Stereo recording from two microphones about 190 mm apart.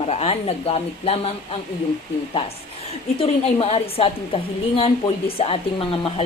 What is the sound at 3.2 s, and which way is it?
A woman's voice, 30° left (ahead or behind).